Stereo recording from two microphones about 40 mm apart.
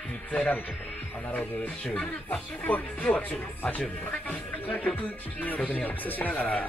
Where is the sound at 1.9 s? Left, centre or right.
Left.